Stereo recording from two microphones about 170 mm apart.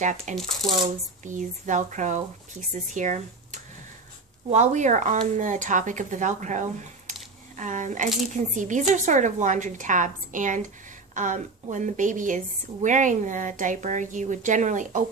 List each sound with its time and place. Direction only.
0.0 s a woman's voice: 45° right (ahead or behind)
0.4 s speech: centre (ahead or behind)
1.2 s a woman's voice: 45° right (ahead or behind)